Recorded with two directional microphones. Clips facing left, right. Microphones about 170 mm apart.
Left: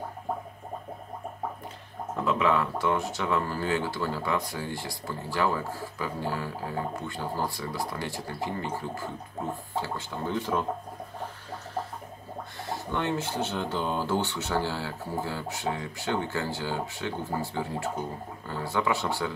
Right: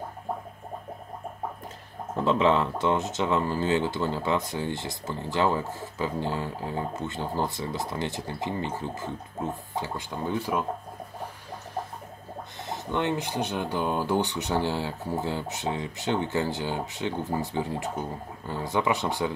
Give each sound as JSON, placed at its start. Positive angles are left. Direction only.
{"t": 2.2, "sound": "speech", "side_deg": -25}
{"t": 12.6, "sound": "speech", "side_deg": -20}